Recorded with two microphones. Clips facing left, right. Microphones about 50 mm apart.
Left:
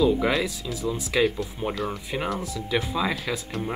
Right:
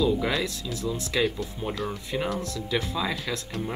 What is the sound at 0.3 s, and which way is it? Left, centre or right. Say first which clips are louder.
Speech: left 3 dB; centre.